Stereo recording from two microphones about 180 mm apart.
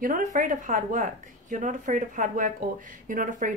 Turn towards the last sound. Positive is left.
turn(degrees=-45)  # may be behind; listen again after turning